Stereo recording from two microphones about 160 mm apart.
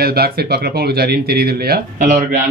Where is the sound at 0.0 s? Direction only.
70° right (ahead or behind).